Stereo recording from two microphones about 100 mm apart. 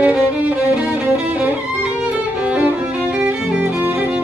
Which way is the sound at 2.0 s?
10° right (ahead or behind).